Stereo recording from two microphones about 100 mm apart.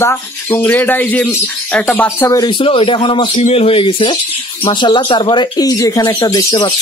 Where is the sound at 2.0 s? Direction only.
25° left (ahead or behind).